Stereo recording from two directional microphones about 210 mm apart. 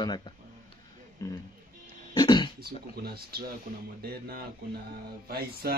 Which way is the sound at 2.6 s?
50° right (ahead or behind).